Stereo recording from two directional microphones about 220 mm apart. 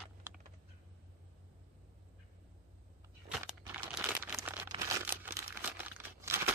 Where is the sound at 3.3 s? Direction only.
5° right (ahead or behind).